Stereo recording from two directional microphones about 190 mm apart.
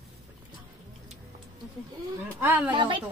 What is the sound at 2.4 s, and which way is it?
Speech, 10° right (ahead or behind).